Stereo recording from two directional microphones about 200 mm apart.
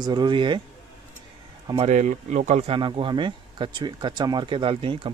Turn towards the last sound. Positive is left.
turn(degrees=-25)  # may be behind; listen again after turning